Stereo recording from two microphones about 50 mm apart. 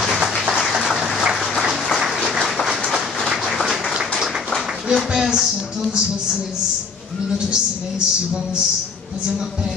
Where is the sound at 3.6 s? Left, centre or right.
Centre.